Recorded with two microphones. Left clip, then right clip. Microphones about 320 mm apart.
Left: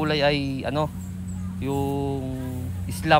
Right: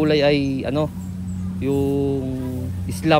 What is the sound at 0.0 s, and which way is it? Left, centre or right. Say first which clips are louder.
Speech: right 5 dB; centre.